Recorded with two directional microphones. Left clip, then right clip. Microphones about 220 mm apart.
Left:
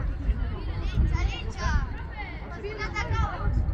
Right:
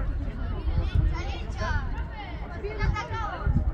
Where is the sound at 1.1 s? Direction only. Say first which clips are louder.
Left 1 dB; centre (ahead or behind).